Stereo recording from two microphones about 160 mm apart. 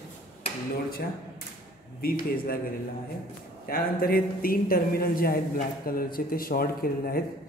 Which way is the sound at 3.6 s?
65° left (ahead or behind).